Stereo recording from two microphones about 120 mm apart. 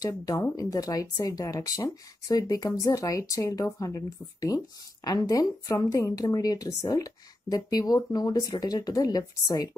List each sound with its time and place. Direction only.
0.0 s speech: 30° left (ahead or behind)